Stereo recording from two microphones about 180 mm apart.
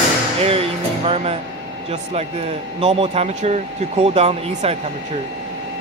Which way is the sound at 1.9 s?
35° right (ahead or behind).